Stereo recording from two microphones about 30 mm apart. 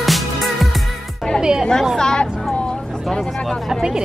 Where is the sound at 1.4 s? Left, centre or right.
Right.